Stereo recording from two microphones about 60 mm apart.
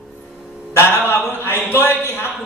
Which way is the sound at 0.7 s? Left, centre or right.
Left.